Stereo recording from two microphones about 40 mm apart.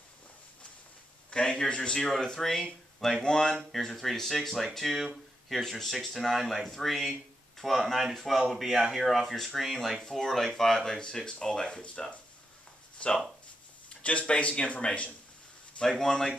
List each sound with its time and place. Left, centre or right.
1.3 s a man's voice: left
3.7 s speech: centre; by 15.0 s left
15.9 s speech: centre